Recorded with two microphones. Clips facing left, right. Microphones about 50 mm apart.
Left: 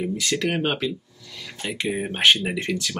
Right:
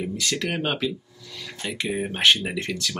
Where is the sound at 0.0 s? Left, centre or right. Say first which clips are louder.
Left 3 dB; centre.